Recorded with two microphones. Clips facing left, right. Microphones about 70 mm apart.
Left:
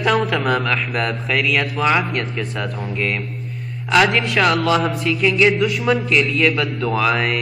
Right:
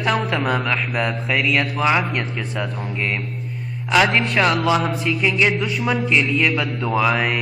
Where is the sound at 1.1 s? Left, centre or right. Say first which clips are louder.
Left 1 dB; centre.